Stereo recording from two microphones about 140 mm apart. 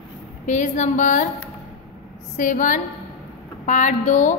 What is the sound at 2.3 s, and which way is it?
A woman's voice, 70° left (ahead or behind).